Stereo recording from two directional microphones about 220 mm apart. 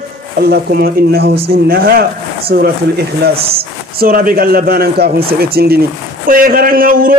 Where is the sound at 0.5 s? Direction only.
45° right (ahead or behind).